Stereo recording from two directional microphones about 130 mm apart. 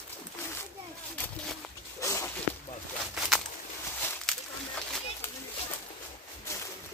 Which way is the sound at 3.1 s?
Centre (ahead or behind).